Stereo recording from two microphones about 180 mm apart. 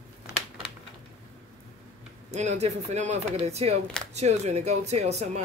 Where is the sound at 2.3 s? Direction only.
40° right (ahead or behind).